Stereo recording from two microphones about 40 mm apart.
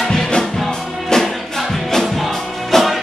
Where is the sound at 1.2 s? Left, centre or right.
Centre.